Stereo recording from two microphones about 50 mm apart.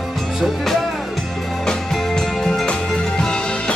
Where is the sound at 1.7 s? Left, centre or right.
Centre.